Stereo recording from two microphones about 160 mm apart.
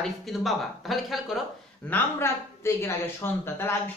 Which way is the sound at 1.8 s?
15° left (ahead or behind).